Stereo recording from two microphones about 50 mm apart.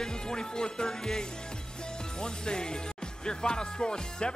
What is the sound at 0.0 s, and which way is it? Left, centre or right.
Speech, centre.